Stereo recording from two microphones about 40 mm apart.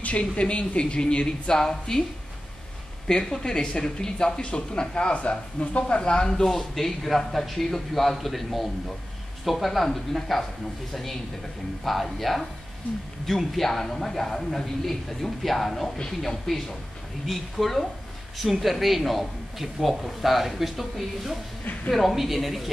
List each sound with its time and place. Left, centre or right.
0.0 s a man's voice: left; by 2.0 s centre
3.2 s speech: centre